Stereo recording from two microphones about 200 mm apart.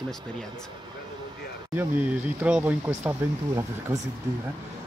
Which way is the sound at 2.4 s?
10° right (ahead or behind).